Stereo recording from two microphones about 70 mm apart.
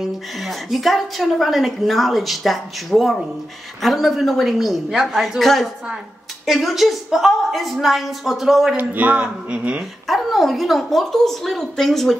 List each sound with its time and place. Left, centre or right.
0.0 s a woman's voice: centre
8.7 s speech: right
9.8 s a woman's voice: centre